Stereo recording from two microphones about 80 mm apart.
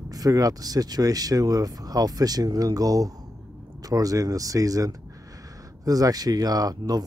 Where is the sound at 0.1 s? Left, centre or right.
Right.